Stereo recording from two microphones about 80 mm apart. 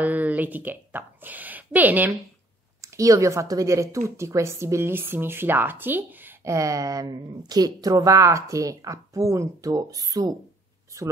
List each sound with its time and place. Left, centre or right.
0.0 s a woman's voice: centre
2.8 s speech: right
6.4 s a woman's voice: right